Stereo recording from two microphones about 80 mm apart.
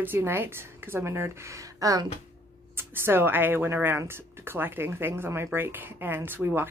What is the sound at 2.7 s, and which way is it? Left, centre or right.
Speech, right.